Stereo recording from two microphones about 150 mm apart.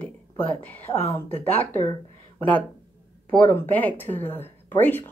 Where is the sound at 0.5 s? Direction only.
10° left (ahead or behind).